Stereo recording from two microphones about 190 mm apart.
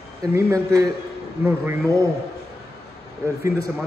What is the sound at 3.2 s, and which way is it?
Speech, 15° right (ahead or behind).